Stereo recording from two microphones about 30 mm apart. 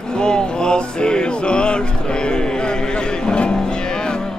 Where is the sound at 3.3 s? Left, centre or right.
Left.